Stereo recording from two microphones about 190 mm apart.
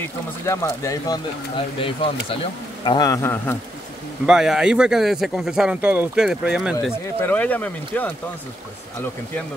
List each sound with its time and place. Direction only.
0.0 s speech: 15° left (ahead or behind)
1.8 s speech: 30° left (ahead or behind); by 3.5 s 15° left (ahead or behind)
4.3 s speech: 5° right (ahead or behind)
7.2 s speech: 10° left (ahead or behind)